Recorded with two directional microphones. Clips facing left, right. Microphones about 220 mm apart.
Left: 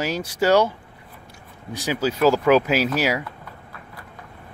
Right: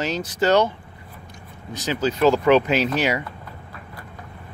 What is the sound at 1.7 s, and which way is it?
Speech, 10° left (ahead or behind).